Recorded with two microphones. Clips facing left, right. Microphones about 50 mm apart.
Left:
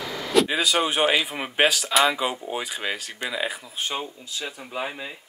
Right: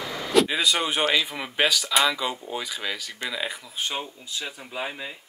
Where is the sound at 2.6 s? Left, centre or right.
Left.